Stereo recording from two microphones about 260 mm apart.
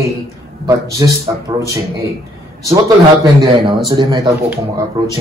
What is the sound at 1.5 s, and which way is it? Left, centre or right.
Speech, centre.